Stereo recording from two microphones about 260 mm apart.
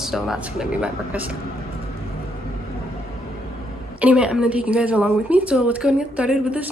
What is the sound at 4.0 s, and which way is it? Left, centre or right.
A woman's voice, centre.